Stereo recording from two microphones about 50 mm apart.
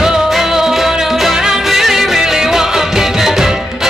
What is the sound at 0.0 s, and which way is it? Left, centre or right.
Music, centre.